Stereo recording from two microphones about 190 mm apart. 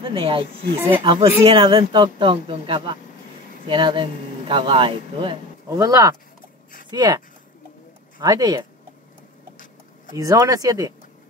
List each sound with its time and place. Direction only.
0.1 s speech: 25° right (ahead or behind)
0.7 s speech: 10° right (ahead or behind)
1.0 s speech: 25° right (ahead or behind)
10.1 s speech: 20° right (ahead or behind)